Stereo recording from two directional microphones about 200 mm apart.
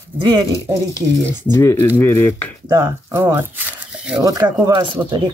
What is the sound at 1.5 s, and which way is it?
Speech, 10° left (ahead or behind).